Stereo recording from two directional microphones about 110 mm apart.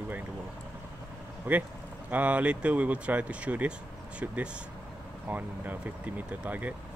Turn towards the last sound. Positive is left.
turn(degrees=-15)  # may be behind; listen again after turning